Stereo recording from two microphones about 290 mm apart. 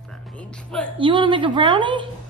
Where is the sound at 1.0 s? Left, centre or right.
Centre.